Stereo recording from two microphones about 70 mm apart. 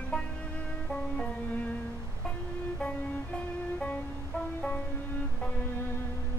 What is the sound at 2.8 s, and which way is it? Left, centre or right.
Music, centre.